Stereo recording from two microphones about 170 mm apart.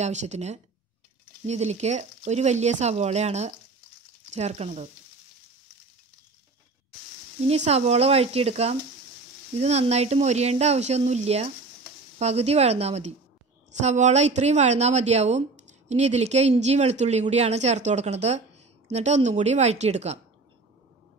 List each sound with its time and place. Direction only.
0.0 s a woman's voice: 45° right (ahead or behind)
7.4 s a woman's voice: 40° right (ahead or behind)